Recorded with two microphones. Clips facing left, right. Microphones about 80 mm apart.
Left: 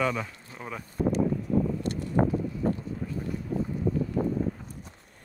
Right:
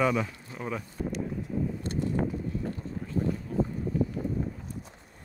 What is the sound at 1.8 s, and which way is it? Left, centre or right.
Vehicle, left.